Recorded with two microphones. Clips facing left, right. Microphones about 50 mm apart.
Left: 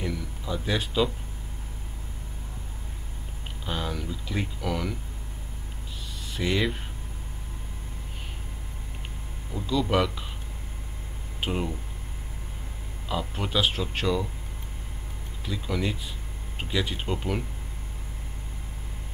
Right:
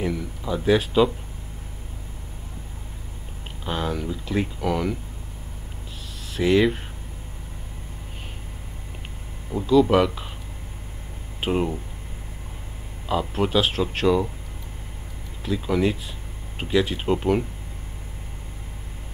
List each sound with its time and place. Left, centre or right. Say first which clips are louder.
0.0 s a sound: right 6 dB; centre
3.6 s speech: right 5 dB; centre
6.3 s speech: right 8 dB; centre
9.7 s speech: right 8 dB; centre
11.4 s speech: right 6 dB; centre
13.3 s speech: right 4 dB; centre
15.4 s speech: right 7 dB; centre